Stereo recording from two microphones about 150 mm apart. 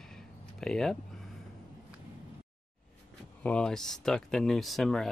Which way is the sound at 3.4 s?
5° left (ahead or behind).